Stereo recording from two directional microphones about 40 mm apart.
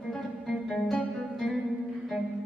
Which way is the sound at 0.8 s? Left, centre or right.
Centre.